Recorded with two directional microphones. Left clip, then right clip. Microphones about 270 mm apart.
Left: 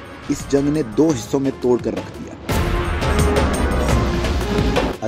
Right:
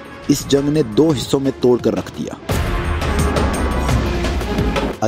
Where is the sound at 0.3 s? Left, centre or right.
Right.